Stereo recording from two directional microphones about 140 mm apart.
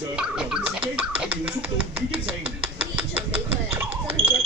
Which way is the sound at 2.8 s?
15° right (ahead or behind).